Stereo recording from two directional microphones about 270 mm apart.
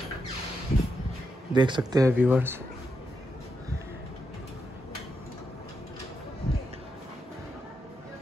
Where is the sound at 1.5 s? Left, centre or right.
Centre.